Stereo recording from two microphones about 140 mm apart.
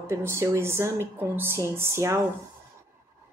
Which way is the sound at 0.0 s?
20° right (ahead or behind).